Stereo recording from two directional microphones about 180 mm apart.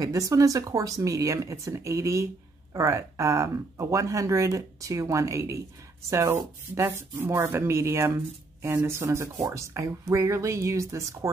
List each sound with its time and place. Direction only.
0.0 s speech: 20° right (ahead or behind)